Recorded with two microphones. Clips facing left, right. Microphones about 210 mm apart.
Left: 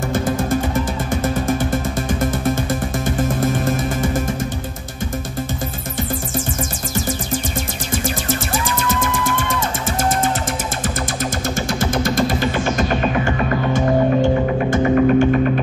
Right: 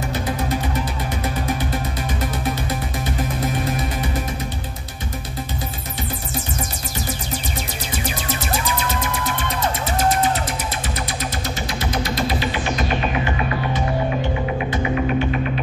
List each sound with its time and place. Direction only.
3.3 s music: 50° left (ahead or behind)
8.6 s music: 50° left (ahead or behind)
11.8 s music: 50° left (ahead or behind)
14.7 s music: 50° left (ahead or behind)